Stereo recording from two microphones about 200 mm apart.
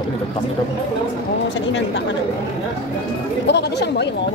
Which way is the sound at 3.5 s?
55° left (ahead or behind).